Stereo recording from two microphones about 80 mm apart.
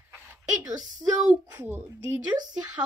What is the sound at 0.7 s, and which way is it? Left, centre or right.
Speech, right.